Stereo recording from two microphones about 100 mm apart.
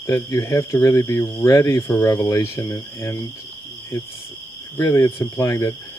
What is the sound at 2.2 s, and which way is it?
Speech, 30° left (ahead or behind).